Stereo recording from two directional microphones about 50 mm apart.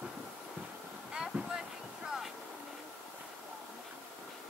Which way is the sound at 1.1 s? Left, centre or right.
Centre.